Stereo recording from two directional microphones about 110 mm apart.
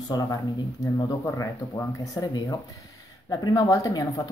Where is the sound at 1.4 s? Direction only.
30° left (ahead or behind).